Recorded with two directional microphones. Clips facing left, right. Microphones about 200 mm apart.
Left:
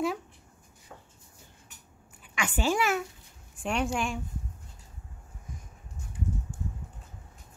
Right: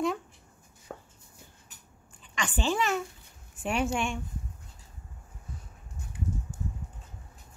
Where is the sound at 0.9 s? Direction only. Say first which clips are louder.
Right 7 dB; 60° right (ahead or behind).